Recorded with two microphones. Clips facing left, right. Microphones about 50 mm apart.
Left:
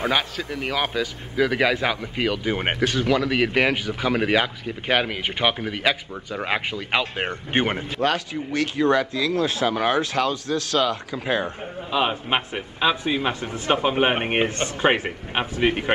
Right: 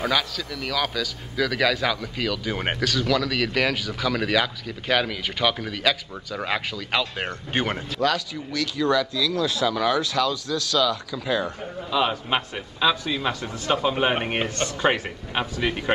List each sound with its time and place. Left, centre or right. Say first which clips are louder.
0.0 s a man's voice: left 1 dB; left